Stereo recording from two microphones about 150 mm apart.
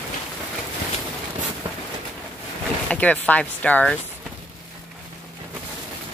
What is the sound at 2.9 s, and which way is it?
Speech, 10° left (ahead or behind).